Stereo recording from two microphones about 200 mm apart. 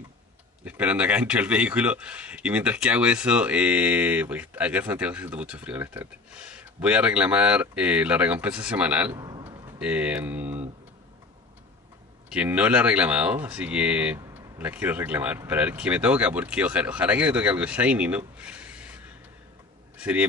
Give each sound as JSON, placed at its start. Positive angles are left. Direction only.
{"t": 0.7, "sound": "speech", "side_deg": -5}
{"t": 9.2, "sound": "a sound", "side_deg": -20}
{"t": 9.8, "sound": "speech", "side_deg": -5}
{"t": 12.3, "sound": "speech", "side_deg": -5}
{"t": 20.0, "sound": "speech", "side_deg": -5}